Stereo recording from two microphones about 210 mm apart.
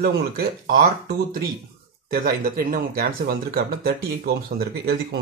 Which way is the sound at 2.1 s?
45° right (ahead or behind).